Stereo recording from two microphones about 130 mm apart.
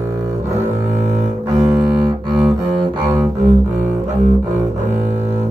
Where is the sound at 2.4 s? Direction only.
30° right (ahead or behind).